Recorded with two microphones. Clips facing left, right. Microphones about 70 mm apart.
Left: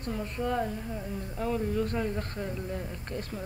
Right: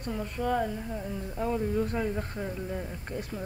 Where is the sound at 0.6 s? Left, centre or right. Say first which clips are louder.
Right 1 dB; right.